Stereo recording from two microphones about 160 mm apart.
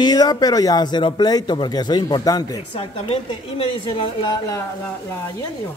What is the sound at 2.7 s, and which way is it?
A woman's voice, 35° left (ahead or behind).